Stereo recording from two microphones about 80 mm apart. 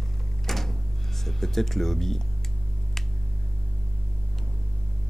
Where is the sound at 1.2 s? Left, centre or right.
Centre.